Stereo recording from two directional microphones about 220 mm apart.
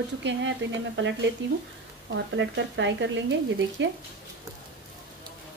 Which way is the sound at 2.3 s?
55° right (ahead or behind).